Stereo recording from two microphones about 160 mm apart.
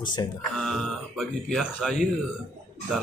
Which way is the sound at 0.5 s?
Centre (ahead or behind).